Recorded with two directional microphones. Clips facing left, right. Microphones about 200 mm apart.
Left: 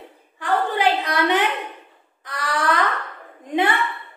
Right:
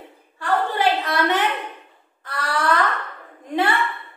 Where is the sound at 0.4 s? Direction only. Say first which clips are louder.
Even; 15° left (ahead or behind).